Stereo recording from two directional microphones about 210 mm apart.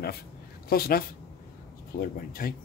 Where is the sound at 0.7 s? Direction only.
45° left (ahead or behind).